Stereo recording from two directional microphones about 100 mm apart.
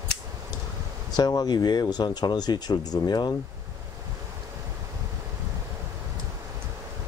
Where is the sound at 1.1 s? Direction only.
40° left (ahead or behind).